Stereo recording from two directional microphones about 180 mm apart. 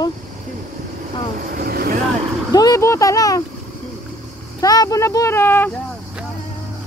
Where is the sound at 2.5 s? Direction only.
20° left (ahead or behind).